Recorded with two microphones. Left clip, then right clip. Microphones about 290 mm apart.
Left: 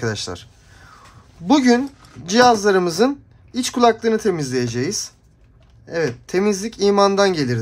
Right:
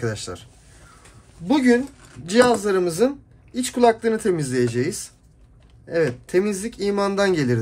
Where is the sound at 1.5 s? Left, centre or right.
Centre.